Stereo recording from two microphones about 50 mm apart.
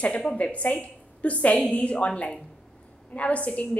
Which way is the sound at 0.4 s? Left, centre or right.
Left.